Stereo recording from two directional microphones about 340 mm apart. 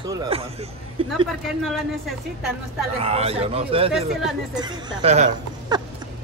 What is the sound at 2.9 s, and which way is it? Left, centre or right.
Speech, centre.